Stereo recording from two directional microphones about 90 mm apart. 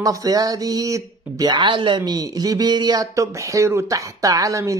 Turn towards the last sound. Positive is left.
turn(degrees=-40)  # may be behind; listen again after turning